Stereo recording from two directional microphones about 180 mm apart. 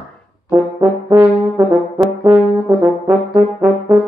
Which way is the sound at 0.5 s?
10° right (ahead or behind).